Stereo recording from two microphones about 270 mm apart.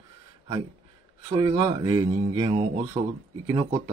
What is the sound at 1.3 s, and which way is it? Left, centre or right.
Speech, centre.